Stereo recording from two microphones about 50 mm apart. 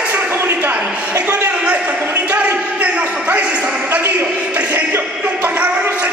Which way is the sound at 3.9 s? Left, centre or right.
Right.